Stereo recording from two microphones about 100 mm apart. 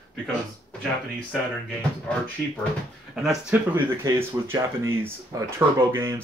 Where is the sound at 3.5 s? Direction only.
20° right (ahead or behind).